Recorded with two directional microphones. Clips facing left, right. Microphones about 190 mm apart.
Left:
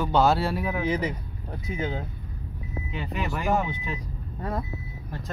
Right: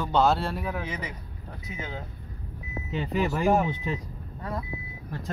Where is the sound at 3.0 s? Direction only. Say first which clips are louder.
Right 5 dB; 35° right (ahead or behind).